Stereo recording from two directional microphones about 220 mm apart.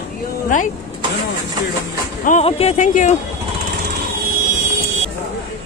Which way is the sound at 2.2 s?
30° left (ahead or behind).